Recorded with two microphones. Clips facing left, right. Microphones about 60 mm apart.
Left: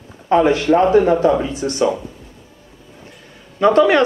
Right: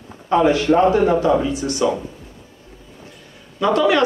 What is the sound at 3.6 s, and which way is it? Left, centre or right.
Speech, left.